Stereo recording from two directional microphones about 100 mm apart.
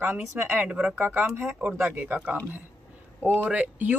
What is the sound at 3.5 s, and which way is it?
Speech, 15° right (ahead or behind).